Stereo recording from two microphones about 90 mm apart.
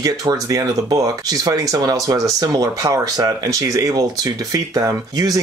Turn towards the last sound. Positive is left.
turn(degrees=-40)  # may be behind; listen again after turning